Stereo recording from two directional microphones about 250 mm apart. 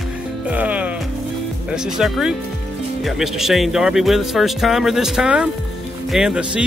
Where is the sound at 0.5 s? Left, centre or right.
Centre.